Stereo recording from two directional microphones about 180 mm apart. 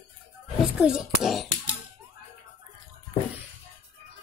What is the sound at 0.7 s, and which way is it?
Speech, centre (ahead or behind).